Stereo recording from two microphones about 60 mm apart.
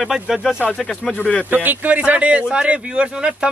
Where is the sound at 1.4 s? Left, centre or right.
Right.